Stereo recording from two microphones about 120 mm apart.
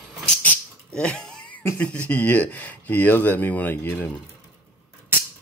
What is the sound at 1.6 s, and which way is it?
Speech, 15° left (ahead or behind).